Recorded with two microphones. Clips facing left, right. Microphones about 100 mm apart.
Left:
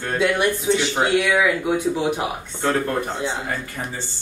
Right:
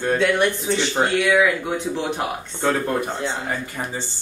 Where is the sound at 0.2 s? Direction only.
5° left (ahead or behind).